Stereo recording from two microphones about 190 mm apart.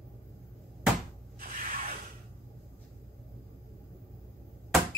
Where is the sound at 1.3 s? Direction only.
45° right (ahead or behind).